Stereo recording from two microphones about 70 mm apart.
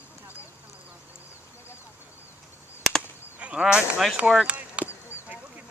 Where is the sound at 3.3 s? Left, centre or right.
Centre.